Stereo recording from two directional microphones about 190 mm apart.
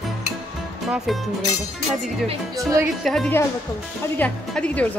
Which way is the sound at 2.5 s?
15° right (ahead or behind).